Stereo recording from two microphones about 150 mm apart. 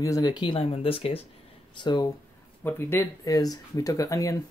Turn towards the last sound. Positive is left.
turn(degrees=20)  # may be behind; listen again after turning